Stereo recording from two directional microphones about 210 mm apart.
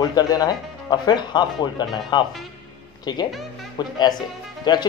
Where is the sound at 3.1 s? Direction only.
20° left (ahead or behind).